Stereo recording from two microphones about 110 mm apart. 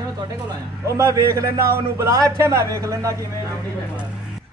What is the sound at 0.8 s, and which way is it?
A man's voice, 30° right (ahead or behind).